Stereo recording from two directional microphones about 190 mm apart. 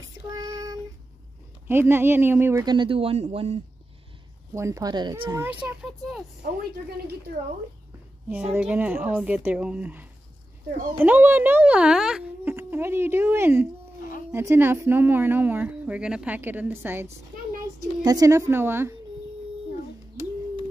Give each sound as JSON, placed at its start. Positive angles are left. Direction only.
{"t": 0.3, "sound": "child singing", "side_deg": -20}
{"t": 1.7, "sound": "speech", "side_deg": -10}
{"t": 4.6, "sound": "speech", "side_deg": -15}
{"t": 8.3, "sound": "speech", "side_deg": -5}